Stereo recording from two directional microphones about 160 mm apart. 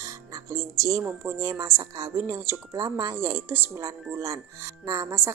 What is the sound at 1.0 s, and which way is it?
Speech, 15° right (ahead or behind).